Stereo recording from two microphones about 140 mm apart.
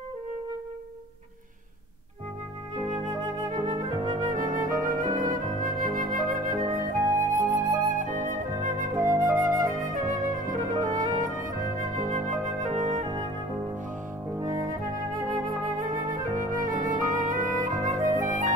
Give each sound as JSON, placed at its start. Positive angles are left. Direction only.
{"t": 2.9, "sound": "flute", "side_deg": -60}
{"t": 4.0, "sound": "music", "side_deg": -30}
{"t": 4.6, "sound": "music", "side_deg": -75}
{"t": 5.1, "sound": "flute", "side_deg": -75}
{"t": 8.9, "sound": "flute", "side_deg": -25}
{"t": 9.7, "sound": "flute", "side_deg": -70}
{"t": 10.8, "sound": "music", "side_deg": -65}
{"t": 12.3, "sound": "flute", "side_deg": -60}
{"t": 14.5, "sound": "music", "side_deg": -30}
{"t": 15.3, "sound": "music", "side_deg": -75}
{"t": 17.7, "sound": "music", "side_deg": -25}
{"t": 18.0, "sound": "flute", "side_deg": -65}